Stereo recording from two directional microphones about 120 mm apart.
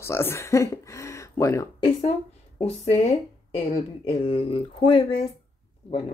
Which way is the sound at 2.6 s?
50° left (ahead or behind).